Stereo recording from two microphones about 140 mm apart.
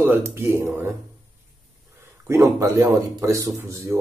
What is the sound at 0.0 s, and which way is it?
Speech, 20° right (ahead or behind).